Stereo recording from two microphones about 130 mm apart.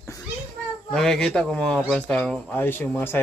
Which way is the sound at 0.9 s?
5° left (ahead or behind).